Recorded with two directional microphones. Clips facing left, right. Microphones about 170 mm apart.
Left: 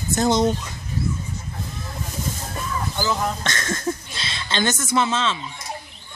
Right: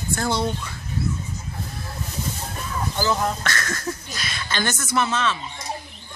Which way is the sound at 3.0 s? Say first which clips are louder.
Right 2 dB; 5° right (ahead or behind).